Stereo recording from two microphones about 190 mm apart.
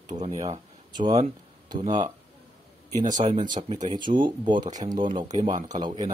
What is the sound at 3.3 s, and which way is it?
Speech, 25° right (ahead or behind).